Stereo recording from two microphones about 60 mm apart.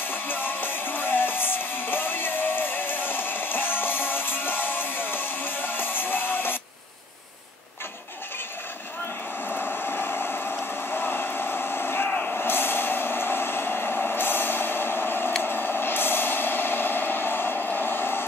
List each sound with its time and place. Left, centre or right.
0.0 s music: left
9.6 s a sound: left
12.1 s vehicle: left
12.4 s vehicle: left